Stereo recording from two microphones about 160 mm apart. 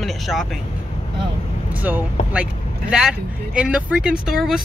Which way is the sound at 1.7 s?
10° right (ahead or behind).